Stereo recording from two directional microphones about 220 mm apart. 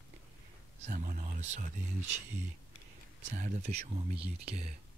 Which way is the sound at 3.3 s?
35° right (ahead or behind).